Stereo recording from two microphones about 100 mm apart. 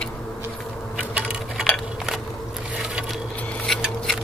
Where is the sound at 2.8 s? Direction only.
5° right (ahead or behind).